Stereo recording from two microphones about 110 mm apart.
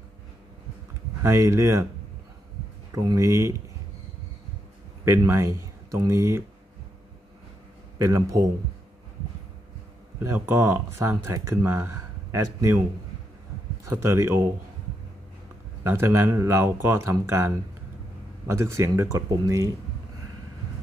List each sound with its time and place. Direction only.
1.2 s speech: 25° right (ahead or behind)
2.9 s speech: 30° right (ahead or behind)
5.0 s speech: 25° right (ahead or behind)
8.0 s speech: 30° right (ahead or behind)
10.1 s speech: 20° right (ahead or behind)
13.8 s speech: 25° right (ahead or behind)
15.8 s speech: 20° right (ahead or behind)
18.5 s speech: 25° right (ahead or behind)